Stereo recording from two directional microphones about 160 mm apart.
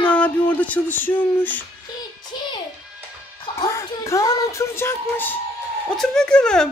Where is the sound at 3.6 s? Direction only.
20° left (ahead or behind).